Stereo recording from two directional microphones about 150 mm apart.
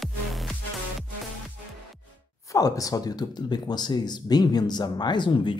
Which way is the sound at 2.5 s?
25° left (ahead or behind).